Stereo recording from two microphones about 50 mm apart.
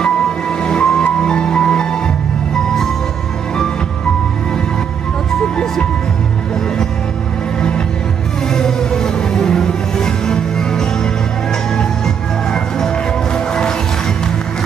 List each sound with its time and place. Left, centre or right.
0.0 s music: centre
8.5 s music: centre
12.4 s music: centre